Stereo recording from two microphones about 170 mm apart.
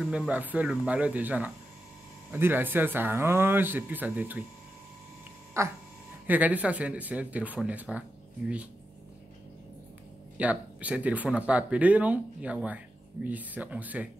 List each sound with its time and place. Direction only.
0.0 s speech: 5° right (ahead or behind)
5.5 s speech: 15° right (ahead or behind)
10.3 s speech: 10° right (ahead or behind)